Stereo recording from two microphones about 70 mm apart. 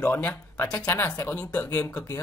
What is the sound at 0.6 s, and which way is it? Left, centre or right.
Speech, centre.